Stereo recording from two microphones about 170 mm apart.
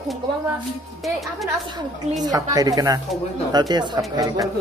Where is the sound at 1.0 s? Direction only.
Centre (ahead or behind).